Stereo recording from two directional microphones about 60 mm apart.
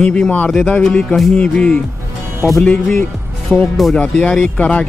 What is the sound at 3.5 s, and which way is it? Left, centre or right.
Speech, centre.